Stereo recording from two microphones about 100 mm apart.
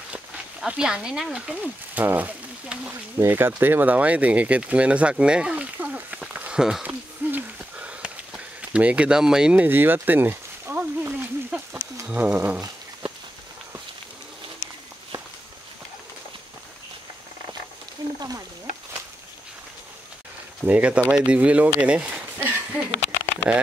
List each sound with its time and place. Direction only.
0.1 s speech: 10° right (ahead or behind)
2.9 s speech: 25° right (ahead or behind)
6.3 s a sound: 15° right (ahead or behind)
12.1 s speech: 15° right (ahead or behind)
20.6 s speech: 15° right (ahead or behind)
21.8 s a sound: 10° right (ahead or behind)
23.5 s speech: 15° right (ahead or behind)